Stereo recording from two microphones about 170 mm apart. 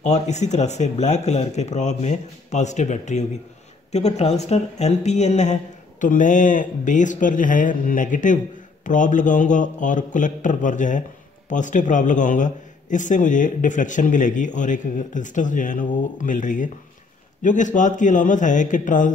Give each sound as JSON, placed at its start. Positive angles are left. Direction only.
{"t": 0.0, "sound": "a man's voice", "side_deg": 40}